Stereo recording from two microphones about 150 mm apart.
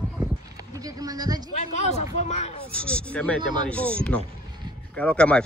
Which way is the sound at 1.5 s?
50° left (ahead or behind).